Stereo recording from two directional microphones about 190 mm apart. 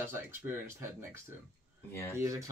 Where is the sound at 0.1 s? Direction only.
10° right (ahead or behind).